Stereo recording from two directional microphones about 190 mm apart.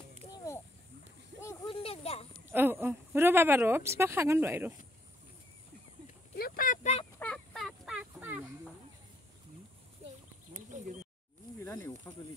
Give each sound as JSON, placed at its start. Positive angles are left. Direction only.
{"t": 1.4, "sound": "a sound", "side_deg": 15}
{"t": 1.7, "sound": "a sound", "side_deg": 30}
{"t": 2.5, "sound": "speech", "side_deg": -10}
{"t": 6.3, "sound": "speech", "side_deg": 50}
{"t": 7.2, "sound": "fowl", "side_deg": 5}
{"t": 10.5, "sound": "bird", "side_deg": -40}
{"t": 11.6, "sound": "speech", "side_deg": 10}